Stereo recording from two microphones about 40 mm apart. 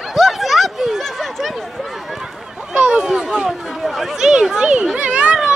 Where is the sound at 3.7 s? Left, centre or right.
Centre.